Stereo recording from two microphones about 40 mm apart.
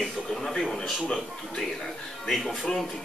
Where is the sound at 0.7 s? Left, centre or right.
Centre.